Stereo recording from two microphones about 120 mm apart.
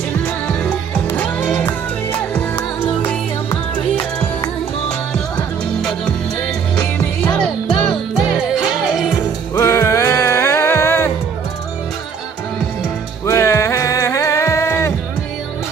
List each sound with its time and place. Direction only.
0.5 s music: 10° left (ahead or behind)
5.8 s music: 5° left (ahead or behind)
7.4 s music: centre (ahead or behind)
9.6 s music: 25° left (ahead or behind)
13.2 s music: 25° left (ahead or behind)